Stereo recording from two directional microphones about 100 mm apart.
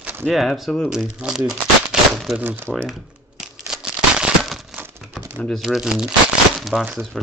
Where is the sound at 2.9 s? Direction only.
5° right (ahead or behind).